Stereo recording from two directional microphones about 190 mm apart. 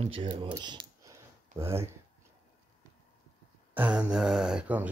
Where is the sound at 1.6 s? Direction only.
15° right (ahead or behind).